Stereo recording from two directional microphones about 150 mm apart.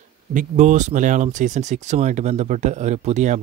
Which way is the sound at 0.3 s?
55° right (ahead or behind).